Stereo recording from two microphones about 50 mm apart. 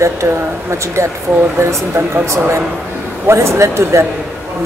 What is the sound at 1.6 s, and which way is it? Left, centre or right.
Speech, right.